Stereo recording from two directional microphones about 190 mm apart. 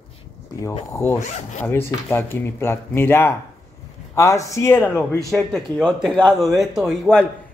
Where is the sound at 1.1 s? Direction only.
40° left (ahead or behind).